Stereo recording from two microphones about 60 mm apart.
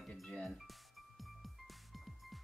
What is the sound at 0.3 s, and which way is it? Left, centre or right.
Music, centre.